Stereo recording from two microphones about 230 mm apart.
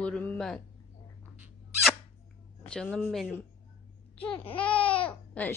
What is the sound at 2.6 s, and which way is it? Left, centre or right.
Speech, centre.